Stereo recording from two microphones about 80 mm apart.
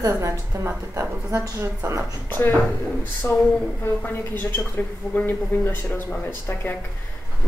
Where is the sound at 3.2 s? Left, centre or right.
Left.